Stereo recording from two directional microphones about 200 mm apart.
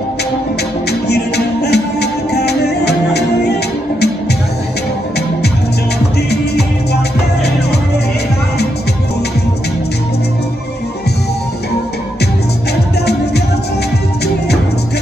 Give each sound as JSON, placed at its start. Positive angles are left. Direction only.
{"t": 1.0, "sound": "music", "side_deg": 55}